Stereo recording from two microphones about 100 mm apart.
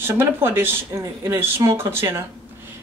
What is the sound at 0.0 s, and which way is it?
Speech, 25° right (ahead or behind).